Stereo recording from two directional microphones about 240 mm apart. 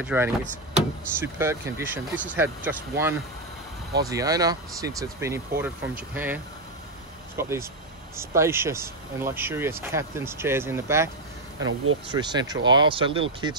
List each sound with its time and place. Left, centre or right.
0.0 s speech: centre
11.6 s speech: right
12.1 s speech: centre